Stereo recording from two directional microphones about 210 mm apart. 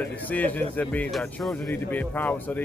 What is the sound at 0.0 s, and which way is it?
Speech, 5° left (ahead or behind).